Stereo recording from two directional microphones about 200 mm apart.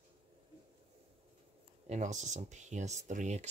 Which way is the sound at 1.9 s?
35° right (ahead or behind).